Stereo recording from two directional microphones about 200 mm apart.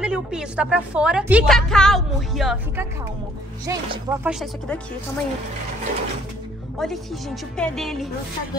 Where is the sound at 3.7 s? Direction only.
15° right (ahead or behind).